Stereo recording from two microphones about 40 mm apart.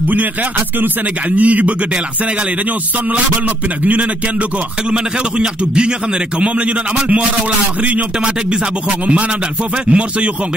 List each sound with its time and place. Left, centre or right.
0.1 s a man's voice: right
3.1 s a man's voice: right
4.8 s a man's voice: right